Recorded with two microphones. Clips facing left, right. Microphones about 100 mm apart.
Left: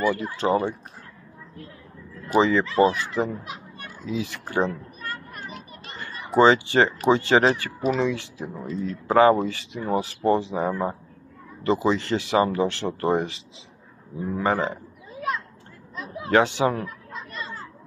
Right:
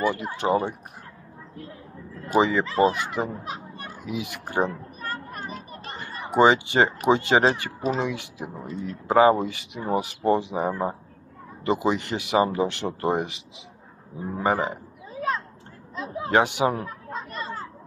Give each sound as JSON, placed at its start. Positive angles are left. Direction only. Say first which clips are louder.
{"t": 0.0, "sound": "speech", "louder": "left 1 dB", "side_deg": -25}
{"t": 2.3, "sound": "speech", "louder": "left 2 dB", "side_deg": -15}
{"t": 3.3, "sound": "fowl", "louder": "even", "side_deg": -35}
{"t": 4.0, "sound": "speech", "louder": "left 3 dB", "side_deg": -20}
{"t": 5.0, "sound": "a sound", "louder": "right 3 dB", "side_deg": -35}
{"t": 6.3, "sound": "speech", "louder": "left 1 dB", "side_deg": -20}
{"t": 14.4, "sound": "speech", "louder": "even", "side_deg": -15}
{"t": 15.1, "sound": "a sound", "louder": "right 1 dB", "side_deg": -35}
{"t": 16.0, "sound": "speech", "louder": "left 1 dB", "side_deg": -30}
{"t": 16.8, "sound": "a sound", "louder": "right 2 dB", "side_deg": -35}